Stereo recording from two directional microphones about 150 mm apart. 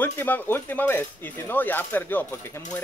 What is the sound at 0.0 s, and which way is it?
Speech, 10° left (ahead or behind).